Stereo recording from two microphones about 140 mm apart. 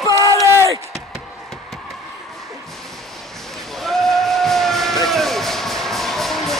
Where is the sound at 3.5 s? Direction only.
Centre (ahead or behind).